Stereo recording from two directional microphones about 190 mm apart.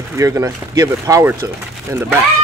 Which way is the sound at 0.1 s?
15° right (ahead or behind).